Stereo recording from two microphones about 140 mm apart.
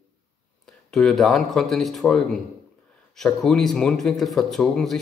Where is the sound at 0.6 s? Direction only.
5° left (ahead or behind).